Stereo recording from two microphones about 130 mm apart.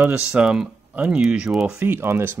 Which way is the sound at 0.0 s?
5° right (ahead or behind).